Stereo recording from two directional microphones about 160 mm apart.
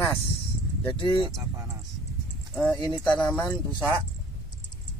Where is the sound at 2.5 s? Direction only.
10° left (ahead or behind).